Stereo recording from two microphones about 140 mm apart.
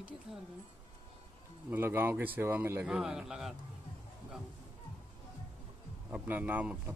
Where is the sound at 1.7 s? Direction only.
15° right (ahead or behind).